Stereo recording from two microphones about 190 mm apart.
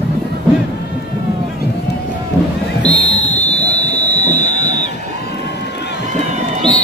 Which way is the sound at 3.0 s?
35° left (ahead or behind).